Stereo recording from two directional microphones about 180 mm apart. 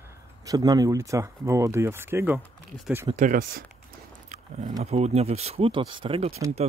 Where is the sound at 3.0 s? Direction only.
45° right (ahead or behind).